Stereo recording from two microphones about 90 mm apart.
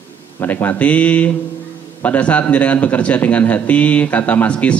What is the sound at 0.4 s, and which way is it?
Speech, 20° left (ahead or behind).